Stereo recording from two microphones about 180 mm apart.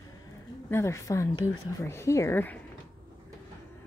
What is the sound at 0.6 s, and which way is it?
A woman's voice, 15° left (ahead or behind).